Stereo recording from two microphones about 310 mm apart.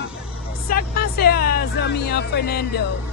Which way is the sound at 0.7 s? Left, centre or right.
Left.